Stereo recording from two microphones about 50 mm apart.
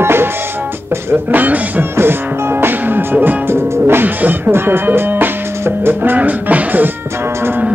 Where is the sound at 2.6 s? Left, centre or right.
Right.